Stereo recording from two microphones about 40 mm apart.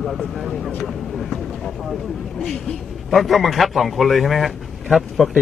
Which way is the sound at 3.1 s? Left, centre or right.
Centre.